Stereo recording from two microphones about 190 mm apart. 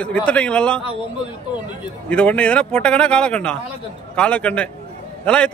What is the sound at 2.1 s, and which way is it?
A man's voice, 5° left (ahead or behind).